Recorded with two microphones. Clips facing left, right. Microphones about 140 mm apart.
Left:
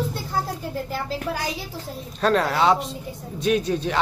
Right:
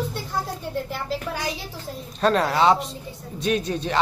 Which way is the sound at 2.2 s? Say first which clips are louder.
Right 1 dB; centre (ahead or behind).